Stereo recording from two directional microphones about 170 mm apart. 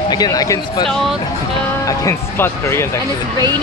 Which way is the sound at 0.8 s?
Centre (ahead or behind).